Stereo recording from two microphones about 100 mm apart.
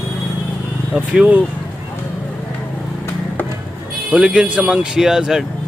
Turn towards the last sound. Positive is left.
turn(degrees=-5)  # may be behind; listen again after turning